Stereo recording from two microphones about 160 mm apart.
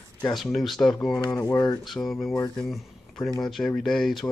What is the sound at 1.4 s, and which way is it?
Mantra, 25° left (ahead or behind).